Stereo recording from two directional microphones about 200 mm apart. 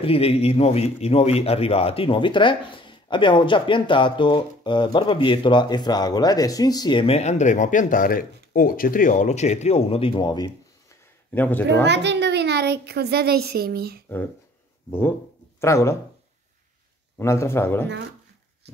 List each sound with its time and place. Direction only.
0.0 s speech: 30° left (ahead or behind)
11.3 s speech: 10° left (ahead or behind)
11.8 s a child's voice: 60° right (ahead or behind)
14.0 s speech: 10° left (ahead or behind)
17.2 s speech: 15° left (ahead or behind)